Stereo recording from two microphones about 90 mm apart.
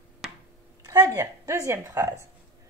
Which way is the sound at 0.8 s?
35° right (ahead or behind).